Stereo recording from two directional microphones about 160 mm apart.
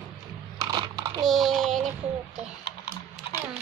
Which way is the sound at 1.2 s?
Centre (ahead or behind).